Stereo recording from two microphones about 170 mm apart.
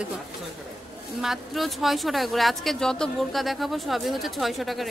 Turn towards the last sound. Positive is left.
turn(degrees=0)  # may be behind; listen again after turning